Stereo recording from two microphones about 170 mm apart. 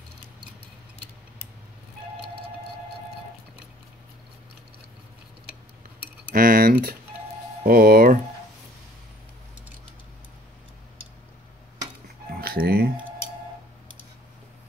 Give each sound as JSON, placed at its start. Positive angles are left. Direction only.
{"t": 6.3, "sound": "speech", "side_deg": -55}
{"t": 12.4, "sound": "music", "side_deg": -65}